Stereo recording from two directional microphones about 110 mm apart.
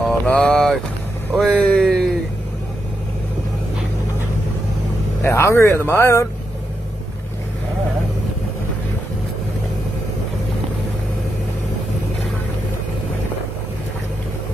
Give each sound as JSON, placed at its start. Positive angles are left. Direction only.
{"t": 0.0, "sound": "speech", "side_deg": 5}
{"t": 1.3, "sound": "vehicle", "side_deg": 5}
{"t": 5.2, "sound": "speech", "side_deg": 25}